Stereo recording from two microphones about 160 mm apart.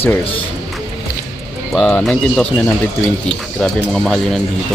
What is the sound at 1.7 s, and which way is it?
Speech, 5° left (ahead or behind).